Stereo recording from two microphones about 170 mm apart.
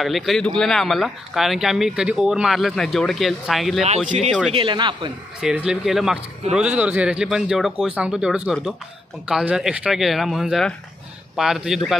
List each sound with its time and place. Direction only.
0.0 s speech: centre (ahead or behind)
4.5 s speech: 30° right (ahead or behind)
5.4 s speech: 5° right (ahead or behind)